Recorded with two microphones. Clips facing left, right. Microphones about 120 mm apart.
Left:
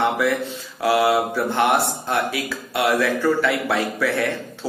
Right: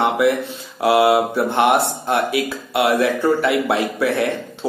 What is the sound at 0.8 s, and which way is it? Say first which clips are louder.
A man's voice: right 4 dB; 25° right (ahead or behind).